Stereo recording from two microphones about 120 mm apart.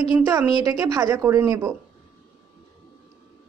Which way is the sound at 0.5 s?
30° right (ahead or behind).